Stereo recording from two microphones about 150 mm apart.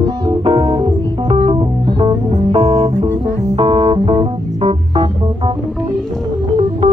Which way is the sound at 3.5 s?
35° right (ahead or behind).